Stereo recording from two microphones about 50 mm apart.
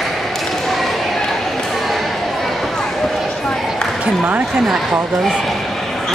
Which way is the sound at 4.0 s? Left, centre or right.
Right.